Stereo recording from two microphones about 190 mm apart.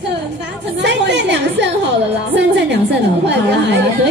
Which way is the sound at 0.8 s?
65° right (ahead or behind).